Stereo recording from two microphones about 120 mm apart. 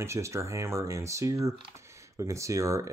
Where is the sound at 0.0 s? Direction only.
25° right (ahead or behind).